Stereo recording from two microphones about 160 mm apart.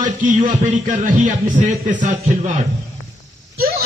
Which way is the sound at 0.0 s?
50° right (ahead or behind).